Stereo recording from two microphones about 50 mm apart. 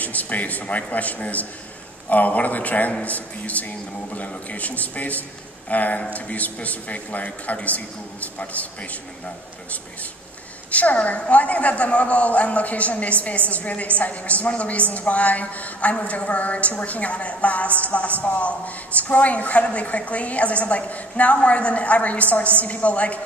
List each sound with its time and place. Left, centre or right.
0.0 s a woman's voice: left
10.7 s a woman's voice: left